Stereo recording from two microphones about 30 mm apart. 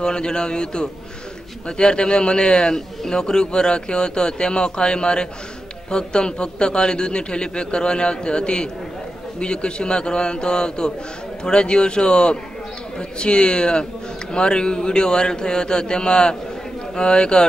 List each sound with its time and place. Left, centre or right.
0.0 s a man's voice: left